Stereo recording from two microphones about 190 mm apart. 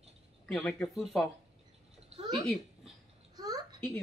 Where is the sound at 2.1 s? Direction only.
20° right (ahead or behind).